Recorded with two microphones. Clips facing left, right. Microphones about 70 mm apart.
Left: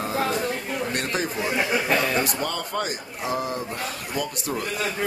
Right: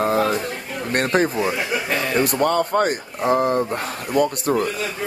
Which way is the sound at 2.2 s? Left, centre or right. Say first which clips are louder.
Right 9 dB; right.